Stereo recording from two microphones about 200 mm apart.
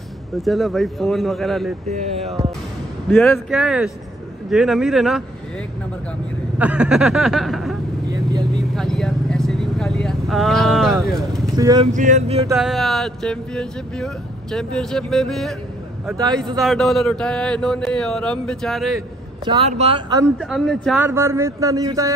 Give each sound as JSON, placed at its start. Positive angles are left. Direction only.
{"t": 0.4, "sound": "speech", "side_deg": 0}
{"t": 3.1, "sound": "speech", "side_deg": 10}
{"t": 3.4, "sound": "speech", "side_deg": 0}
{"t": 6.6, "sound": "speech", "side_deg": -5}
{"t": 8.1, "sound": "vehicle", "side_deg": -20}
{"t": 8.7, "sound": "vehicle", "side_deg": 5}
{"t": 11.5, "sound": "speech", "side_deg": -20}
{"t": 11.9, "sound": "speech", "side_deg": -40}
{"t": 12.5, "sound": "speech", "side_deg": 0}
{"t": 19.4, "sound": "speech", "side_deg": -30}
{"t": 20.3, "sound": "speech", "side_deg": 0}
{"t": 21.0, "sound": "a man's voice", "side_deg": -15}